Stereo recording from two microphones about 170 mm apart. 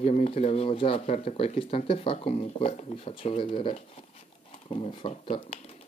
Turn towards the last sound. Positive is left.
turn(degrees=35)  # may be behind; listen again after turning